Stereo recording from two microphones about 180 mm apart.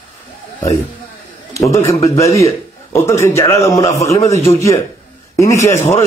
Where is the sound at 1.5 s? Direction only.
15° left (ahead or behind).